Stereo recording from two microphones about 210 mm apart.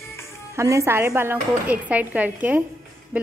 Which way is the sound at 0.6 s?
15° right (ahead or behind).